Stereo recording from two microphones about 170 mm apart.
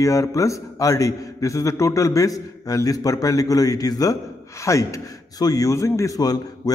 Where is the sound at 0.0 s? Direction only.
20° left (ahead or behind).